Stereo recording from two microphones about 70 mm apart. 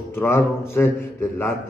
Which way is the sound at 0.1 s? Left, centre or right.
Left.